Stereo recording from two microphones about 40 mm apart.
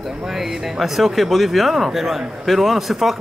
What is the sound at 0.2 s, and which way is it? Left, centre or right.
Speech, centre.